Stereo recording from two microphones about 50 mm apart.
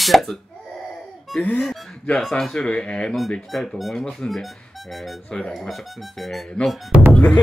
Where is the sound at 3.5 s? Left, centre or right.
Centre.